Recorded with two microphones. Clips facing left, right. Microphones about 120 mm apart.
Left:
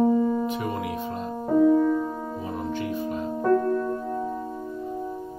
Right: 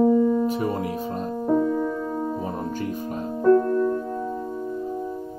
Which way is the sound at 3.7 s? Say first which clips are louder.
Right 4 dB; 5° left (ahead or behind).